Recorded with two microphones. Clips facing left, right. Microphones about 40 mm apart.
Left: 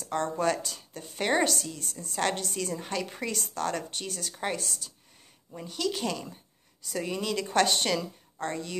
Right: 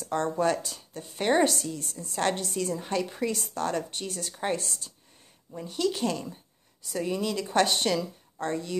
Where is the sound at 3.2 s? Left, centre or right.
Centre.